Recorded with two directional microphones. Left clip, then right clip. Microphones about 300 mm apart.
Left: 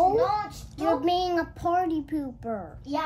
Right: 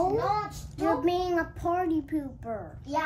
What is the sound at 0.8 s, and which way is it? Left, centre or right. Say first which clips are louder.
A child's voice: left 2 dB; left.